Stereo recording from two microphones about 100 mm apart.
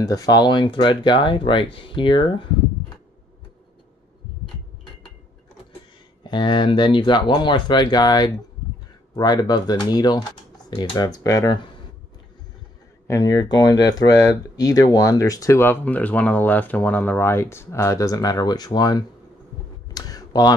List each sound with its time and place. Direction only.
0.0 s speech: 40° left (ahead or behind); by 2.4 s 55° left (ahead or behind)
6.2 s speech: 50° left (ahead or behind)
10.7 s speech: 60° left (ahead or behind)
11.0 s speech: 40° left (ahead or behind)
13.0 s speech: 35° left (ahead or behind)
15.6 s speech: 20° left (ahead or behind); by 19.0 s 40° left (ahead or behind)
19.9 s a sound: 40° left (ahead or behind)